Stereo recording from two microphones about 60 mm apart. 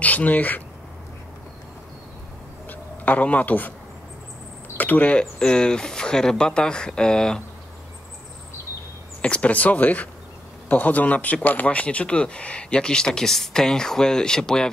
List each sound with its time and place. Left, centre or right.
0.0 s speech: left
2.7 s a man's voice: left
4.7 s speech: left
5.2 s speech: centre
9.2 s speech: left